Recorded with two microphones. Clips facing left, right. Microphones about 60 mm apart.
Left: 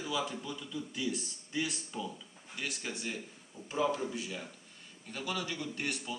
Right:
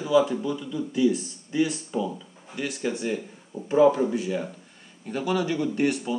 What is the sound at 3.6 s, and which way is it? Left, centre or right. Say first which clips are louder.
A man's voice: right 13 dB; right.